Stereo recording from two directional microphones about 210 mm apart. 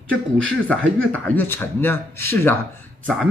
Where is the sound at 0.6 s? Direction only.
10° left (ahead or behind).